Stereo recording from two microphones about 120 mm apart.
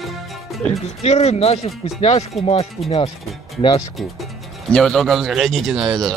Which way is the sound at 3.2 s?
Centre (ahead or behind).